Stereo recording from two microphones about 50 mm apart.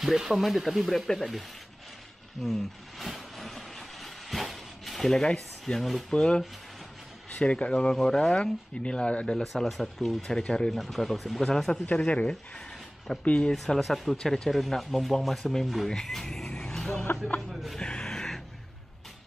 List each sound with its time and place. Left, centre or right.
0.0 s speech: centre
2.4 s vehicle: centre
5.7 s speech: centre
6.1 s speech: centre
9.4 s speech: centre
10.7 s speech: centre
12.0 s speech: left
13.5 s speech: centre
16.4 s vehicle: centre
17.5 s music: centre
17.7 s a sound: centre